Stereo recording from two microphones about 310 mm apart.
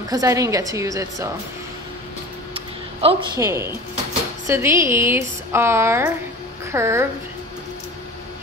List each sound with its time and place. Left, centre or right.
0.1 s a woman's voice: centre
2.5 s a sound: centre
4.5 s a woman's voice: centre